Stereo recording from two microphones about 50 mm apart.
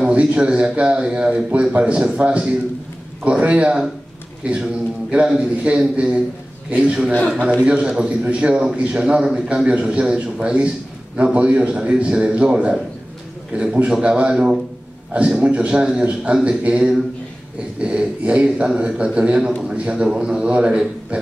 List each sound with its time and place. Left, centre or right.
0.0 s a man's voice: right